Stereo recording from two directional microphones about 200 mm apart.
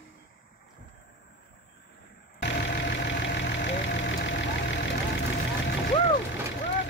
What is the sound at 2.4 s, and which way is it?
Vehicle, 60° left (ahead or behind).